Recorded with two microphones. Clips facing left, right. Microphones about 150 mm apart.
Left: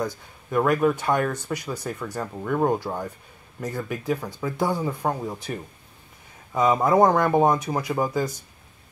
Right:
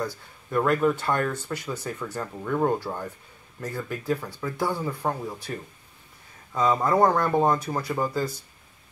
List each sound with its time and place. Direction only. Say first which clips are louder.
0.0 s speech: left 2 dB; 15° left (ahead or behind)